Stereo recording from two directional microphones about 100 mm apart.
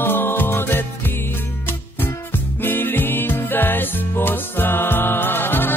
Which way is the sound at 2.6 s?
20° left (ahead or behind).